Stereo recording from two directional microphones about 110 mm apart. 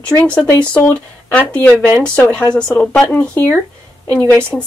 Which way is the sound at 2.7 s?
15° left (ahead or behind).